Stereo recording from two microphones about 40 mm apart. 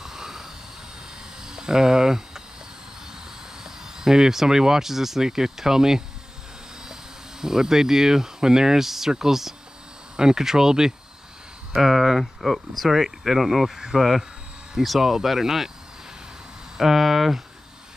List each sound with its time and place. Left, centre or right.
0.0 s vehicle: centre
1.4 s a sound: centre
3.6 s speech: centre
16.7 s speech: centre